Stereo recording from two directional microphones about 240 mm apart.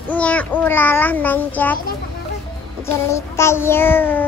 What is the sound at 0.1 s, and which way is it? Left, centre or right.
A child's voice, centre.